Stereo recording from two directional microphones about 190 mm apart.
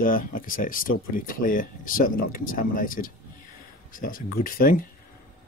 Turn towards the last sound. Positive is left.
turn(degrees=45)  # may be behind; listen again after turning